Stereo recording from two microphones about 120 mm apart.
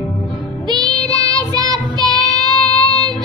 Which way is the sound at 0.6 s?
35° right (ahead or behind).